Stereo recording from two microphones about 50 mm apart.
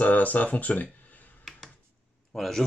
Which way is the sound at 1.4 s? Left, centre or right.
Centre.